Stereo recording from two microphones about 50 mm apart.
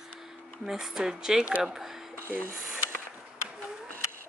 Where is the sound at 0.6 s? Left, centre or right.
Centre.